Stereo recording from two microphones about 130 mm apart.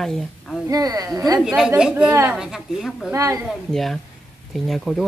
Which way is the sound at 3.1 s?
25° right (ahead or behind).